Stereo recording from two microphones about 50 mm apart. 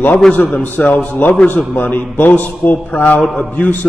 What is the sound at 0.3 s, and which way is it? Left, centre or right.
A man's voice, left.